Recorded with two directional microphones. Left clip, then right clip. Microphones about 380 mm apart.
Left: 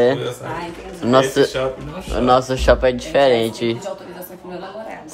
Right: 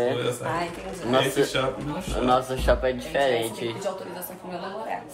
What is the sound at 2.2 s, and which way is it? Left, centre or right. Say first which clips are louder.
Speech: left 8 dB; left.